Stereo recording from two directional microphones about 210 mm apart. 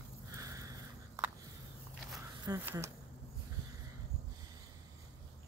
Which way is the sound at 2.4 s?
15° right (ahead or behind).